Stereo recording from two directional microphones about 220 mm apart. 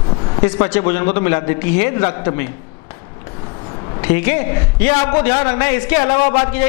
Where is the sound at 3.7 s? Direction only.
25° left (ahead or behind).